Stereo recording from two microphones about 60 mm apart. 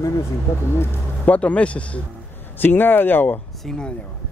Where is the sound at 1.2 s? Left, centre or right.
Left.